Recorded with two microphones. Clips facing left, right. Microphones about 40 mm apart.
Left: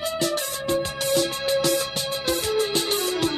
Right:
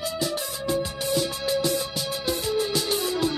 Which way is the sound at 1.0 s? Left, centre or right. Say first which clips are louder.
Left 4 dB; left.